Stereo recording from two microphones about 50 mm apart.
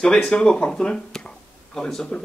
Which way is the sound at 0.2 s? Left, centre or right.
Centre.